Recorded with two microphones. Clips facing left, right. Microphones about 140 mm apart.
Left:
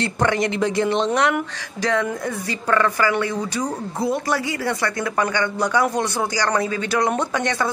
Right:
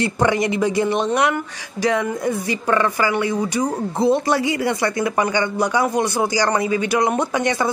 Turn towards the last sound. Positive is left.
turn(degrees=-10)  # may be behind; listen again after turning